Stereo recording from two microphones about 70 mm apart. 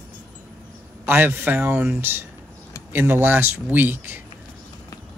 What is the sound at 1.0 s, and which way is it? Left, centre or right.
Speech, right.